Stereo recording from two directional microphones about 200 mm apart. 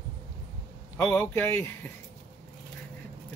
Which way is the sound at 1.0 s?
10° left (ahead or behind).